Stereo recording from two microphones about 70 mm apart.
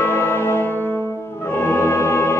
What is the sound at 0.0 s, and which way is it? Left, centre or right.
Music, left.